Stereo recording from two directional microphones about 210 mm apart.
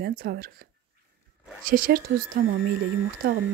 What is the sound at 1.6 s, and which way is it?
Speech, 45° right (ahead or behind).